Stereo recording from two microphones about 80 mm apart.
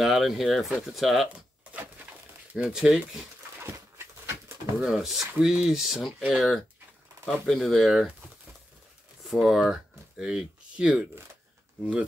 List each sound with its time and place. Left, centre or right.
0.0 s speech: centre
1.3 s a sound: centre
2.6 s speech: centre
4.7 s speech: centre
9.2 s speech: centre
9.7 s a sound: centre
11.8 s speech: centre